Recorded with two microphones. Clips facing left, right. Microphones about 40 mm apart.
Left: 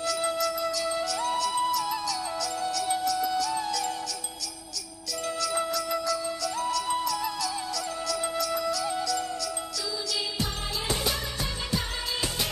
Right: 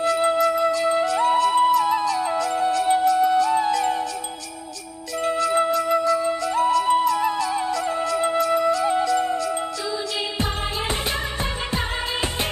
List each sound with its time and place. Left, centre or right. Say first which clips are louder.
0.0 s flute: right 9 dB; right
5.2 s flute: right 9 dB; right